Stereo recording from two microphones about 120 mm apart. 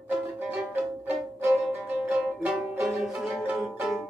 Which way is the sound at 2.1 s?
5° right (ahead or behind).